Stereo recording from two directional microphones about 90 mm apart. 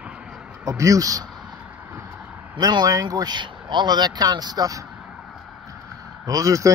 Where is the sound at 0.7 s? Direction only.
35° right (ahead or behind).